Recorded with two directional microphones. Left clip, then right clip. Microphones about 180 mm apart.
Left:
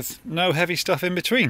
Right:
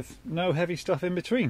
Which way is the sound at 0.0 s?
20° left (ahead or behind).